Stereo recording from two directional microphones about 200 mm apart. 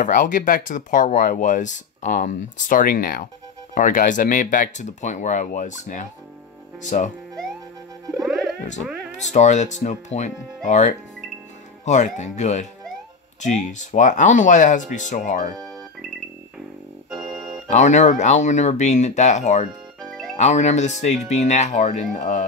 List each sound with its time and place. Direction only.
0.0 s speech: 40° left (ahead or behind)
9.3 s speech: 35° left (ahead or behind)
17.6 s speech: 35° left (ahead or behind)
20.0 s music: centre (ahead or behind)
20.3 s speech: 35° left (ahead or behind)